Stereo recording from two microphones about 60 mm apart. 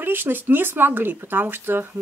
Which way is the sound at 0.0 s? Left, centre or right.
Right.